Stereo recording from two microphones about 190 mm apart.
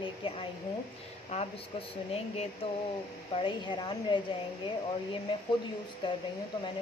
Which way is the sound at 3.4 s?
25° left (ahead or behind).